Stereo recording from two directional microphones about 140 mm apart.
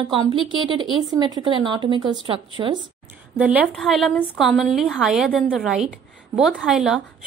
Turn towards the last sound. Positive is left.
turn(degrees=-5)  # may be behind; listen again after turning